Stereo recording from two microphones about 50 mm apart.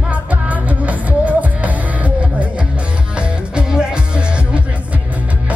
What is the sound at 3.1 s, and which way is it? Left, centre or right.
Music, centre.